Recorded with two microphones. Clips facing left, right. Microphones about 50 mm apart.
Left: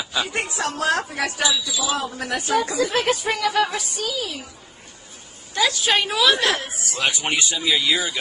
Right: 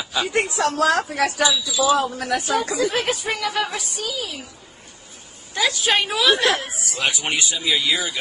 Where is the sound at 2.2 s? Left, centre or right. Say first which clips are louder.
Right 3 dB; right.